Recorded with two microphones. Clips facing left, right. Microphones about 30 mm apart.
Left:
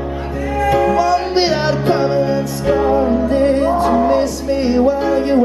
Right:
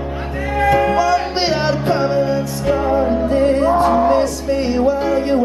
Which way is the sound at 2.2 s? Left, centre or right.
Centre.